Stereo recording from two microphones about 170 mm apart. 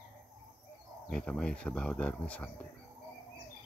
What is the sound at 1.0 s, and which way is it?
Speech, 5° left (ahead or behind).